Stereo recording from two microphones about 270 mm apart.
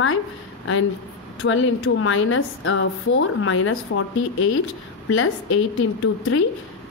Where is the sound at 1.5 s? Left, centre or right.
Left.